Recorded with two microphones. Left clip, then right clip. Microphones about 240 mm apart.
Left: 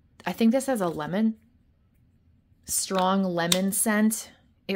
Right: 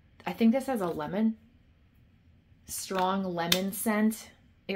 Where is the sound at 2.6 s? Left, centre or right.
Left.